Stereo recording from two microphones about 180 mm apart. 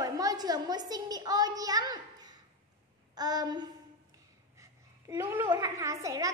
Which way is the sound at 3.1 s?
20° right (ahead or behind).